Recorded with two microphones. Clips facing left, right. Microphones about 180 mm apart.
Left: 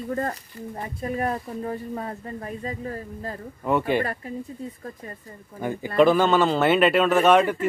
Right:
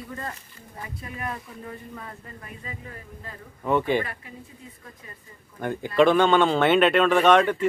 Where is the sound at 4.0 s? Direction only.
40° left (ahead or behind).